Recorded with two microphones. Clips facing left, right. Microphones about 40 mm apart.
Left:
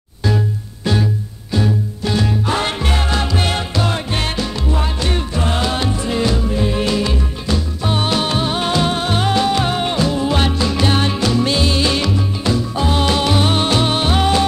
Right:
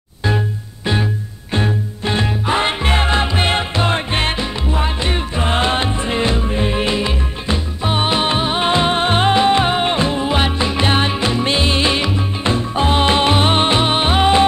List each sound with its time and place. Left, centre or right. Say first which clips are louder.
1.5 s music: left 1 dB; right
2.4 s music: right 2 dB; right